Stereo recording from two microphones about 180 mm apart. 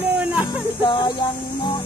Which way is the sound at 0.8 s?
25° left (ahead or behind).